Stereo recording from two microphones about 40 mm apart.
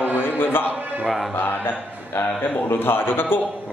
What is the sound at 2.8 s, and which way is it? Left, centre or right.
Speech, left.